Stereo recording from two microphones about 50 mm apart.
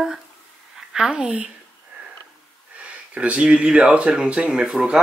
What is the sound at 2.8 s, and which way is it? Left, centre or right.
Speech, right.